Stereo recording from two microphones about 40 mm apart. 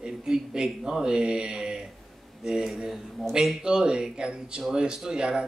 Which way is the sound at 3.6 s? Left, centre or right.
Right.